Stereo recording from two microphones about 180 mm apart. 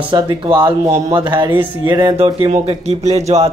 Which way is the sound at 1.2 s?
25° right (ahead or behind).